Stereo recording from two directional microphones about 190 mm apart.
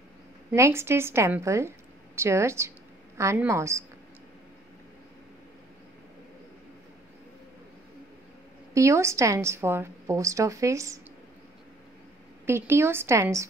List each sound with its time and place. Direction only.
0.5 s a woman's voice: 15° right (ahead or behind)
8.7 s a woman's voice: 15° right (ahead or behind)
12.4 s a woman's voice: 15° right (ahead or behind)